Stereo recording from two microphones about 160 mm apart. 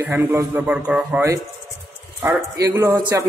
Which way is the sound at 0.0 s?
15° right (ahead or behind).